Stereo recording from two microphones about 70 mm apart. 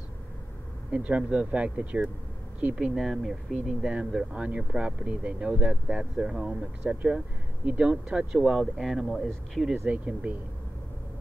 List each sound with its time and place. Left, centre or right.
0.9 s speech: centre
2.7 s speech: centre
8.4 s speech: centre
9.8 s speech: centre